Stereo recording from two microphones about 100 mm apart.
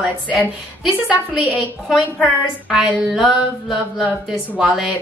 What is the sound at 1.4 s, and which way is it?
A woman's voice, centre (ahead or behind).